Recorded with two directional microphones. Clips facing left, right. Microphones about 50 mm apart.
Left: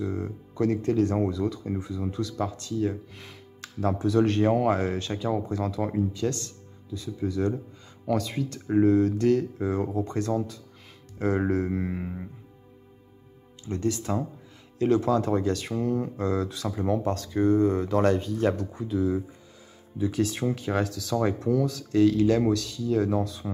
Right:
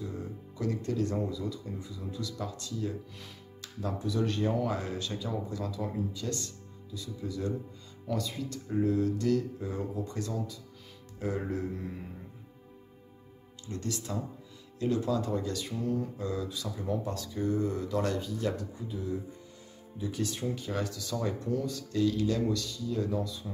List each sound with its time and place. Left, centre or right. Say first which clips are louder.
0.0 s speech: left 8 dB; left
3.6 s speech: left 8 dB; left
8.1 s speech: left 7 dB; left
11.7 s speech: left 9 dB; left
13.7 s speech: left 9 dB; left
14.8 s speech: left 7 dB; left
18.7 s speech: left 11 dB; left
20.0 s speech: left 8 dB; left
22.1 s speech: left 7 dB; left